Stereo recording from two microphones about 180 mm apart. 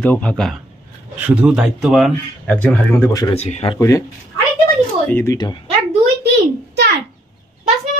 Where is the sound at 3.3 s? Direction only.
35° left (ahead or behind).